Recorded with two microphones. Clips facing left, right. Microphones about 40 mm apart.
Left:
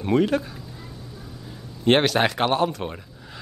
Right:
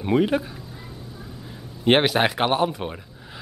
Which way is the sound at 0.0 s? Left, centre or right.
Centre.